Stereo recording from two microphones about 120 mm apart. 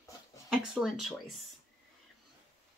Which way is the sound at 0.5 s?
5° right (ahead or behind).